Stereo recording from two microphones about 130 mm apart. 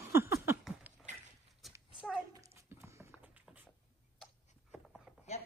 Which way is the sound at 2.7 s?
20° right (ahead or behind).